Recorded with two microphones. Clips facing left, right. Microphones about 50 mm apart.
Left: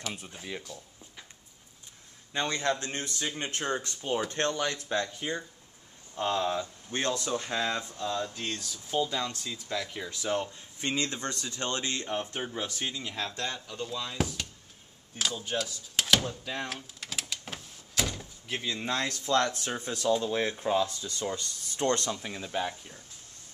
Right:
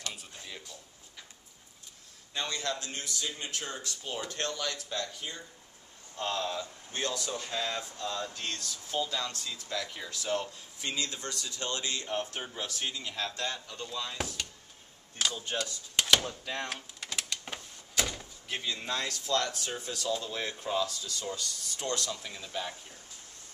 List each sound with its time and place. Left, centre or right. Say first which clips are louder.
0.1 s speech: left 6 dB; centre
2.3 s speech: left 5 dB; left
6.1 s speech: left 4 dB; centre
6.6 s speech: left 4 dB; left
7.5 s speech: left 3 dB; left
8.0 s speech: left 3 dB; centre
10.8 s speech: left 4 dB; left
12.1 s speech: left 2 dB; centre
15.1 s a sound: left 1 dB; centre
18.6 s speech: left 3 dB; centre
19.2 s speech: left 5 dB; left